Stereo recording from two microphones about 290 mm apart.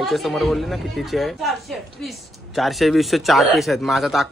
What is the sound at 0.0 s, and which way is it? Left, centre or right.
Speech, centre.